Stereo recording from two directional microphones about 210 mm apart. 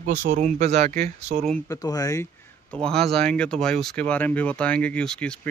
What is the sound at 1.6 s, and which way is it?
Speech, 15° left (ahead or behind).